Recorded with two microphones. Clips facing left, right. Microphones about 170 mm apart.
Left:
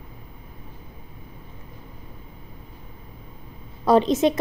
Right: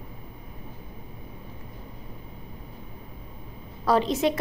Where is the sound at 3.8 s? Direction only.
20° left (ahead or behind).